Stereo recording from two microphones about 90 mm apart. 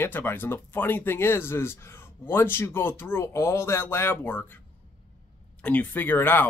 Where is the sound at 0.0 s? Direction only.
25° left (ahead or behind).